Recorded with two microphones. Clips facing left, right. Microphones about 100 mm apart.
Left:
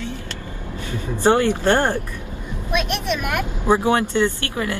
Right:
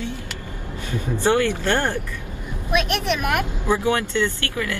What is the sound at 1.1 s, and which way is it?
Speech, 20° left (ahead or behind).